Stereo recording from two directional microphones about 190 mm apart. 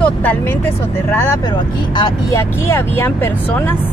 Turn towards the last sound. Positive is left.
turn(degrees=15)  # may be behind; listen again after turning